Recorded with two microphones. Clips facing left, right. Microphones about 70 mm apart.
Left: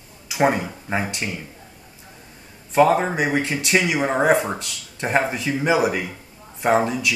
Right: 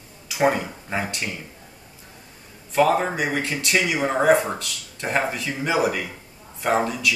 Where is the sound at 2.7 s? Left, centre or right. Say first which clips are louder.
Left 3 dB; centre.